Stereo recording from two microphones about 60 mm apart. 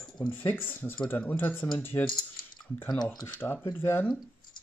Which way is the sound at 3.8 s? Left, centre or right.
Left.